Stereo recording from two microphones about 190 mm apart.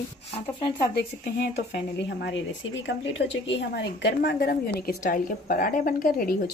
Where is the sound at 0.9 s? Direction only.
60° left (ahead or behind).